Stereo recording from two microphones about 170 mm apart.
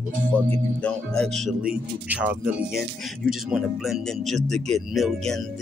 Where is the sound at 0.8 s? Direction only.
5° left (ahead or behind).